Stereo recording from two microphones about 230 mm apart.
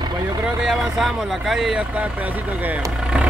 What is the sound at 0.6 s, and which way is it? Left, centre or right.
Speech, centre.